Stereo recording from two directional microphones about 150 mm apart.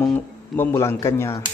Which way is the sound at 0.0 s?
10° left (ahead or behind).